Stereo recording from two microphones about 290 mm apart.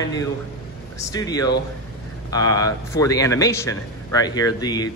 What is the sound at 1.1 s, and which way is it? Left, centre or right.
A man's voice, centre.